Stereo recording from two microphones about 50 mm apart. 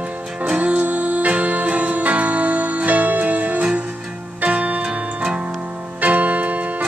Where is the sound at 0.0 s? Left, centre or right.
Right.